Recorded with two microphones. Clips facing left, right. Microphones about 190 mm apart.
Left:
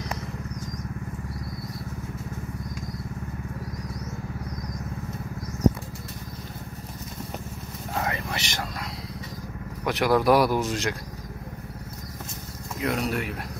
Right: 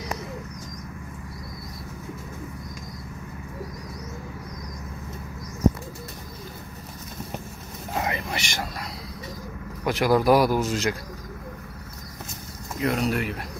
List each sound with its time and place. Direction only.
7.9 s vehicle: 20° right (ahead or behind)
9.8 s speech: centre (ahead or behind)
12.8 s speech: centre (ahead or behind)